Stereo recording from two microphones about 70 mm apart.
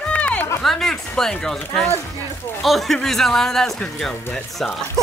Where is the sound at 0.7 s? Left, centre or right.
Centre.